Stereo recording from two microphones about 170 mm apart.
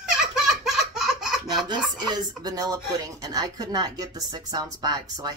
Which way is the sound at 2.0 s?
25° right (ahead or behind).